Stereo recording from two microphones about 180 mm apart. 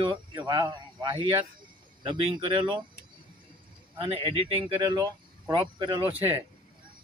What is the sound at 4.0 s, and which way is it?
Speech, 30° right (ahead or behind).